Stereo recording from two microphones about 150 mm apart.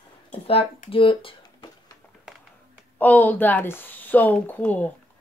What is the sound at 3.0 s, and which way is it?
Speech, 10° left (ahead or behind).